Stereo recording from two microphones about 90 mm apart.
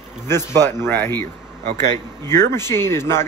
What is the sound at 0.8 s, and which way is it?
Speech, 25° left (ahead or behind).